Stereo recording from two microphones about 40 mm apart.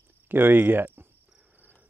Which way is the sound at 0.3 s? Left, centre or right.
Right.